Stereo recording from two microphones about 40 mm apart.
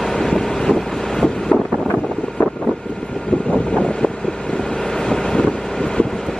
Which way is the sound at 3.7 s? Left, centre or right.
Left.